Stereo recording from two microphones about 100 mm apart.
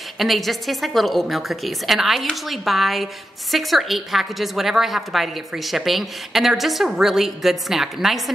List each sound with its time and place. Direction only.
0.2 s a woman's voice: centre (ahead or behind)